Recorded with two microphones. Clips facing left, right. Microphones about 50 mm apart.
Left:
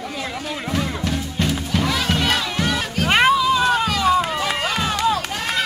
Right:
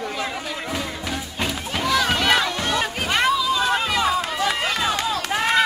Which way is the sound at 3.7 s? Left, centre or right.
Centre.